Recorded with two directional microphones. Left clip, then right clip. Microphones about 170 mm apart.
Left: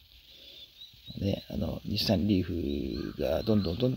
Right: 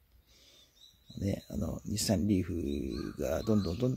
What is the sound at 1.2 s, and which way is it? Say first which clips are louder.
Speech: left 4 dB; 25° left (ahead or behind).